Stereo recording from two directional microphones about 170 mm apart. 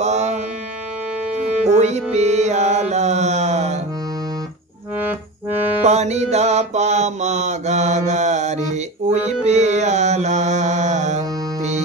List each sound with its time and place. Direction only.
0.0 s music: 40° right (ahead or behind)
1.7 s music: 40° right (ahead or behind)
5.9 s mantra: 40° right (ahead or behind)
9.5 s music: 45° right (ahead or behind)